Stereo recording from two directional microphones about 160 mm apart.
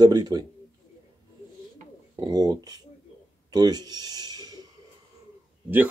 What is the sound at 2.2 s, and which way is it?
Speech, 25° right (ahead or behind).